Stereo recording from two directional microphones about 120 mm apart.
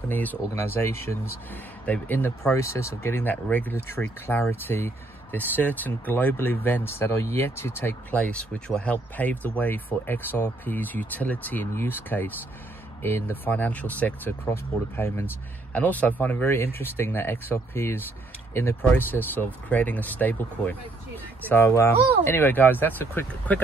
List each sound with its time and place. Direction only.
0.1 s speech: 15° left (ahead or behind)